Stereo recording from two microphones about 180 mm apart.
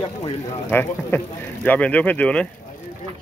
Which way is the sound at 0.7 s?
10° left (ahead or behind).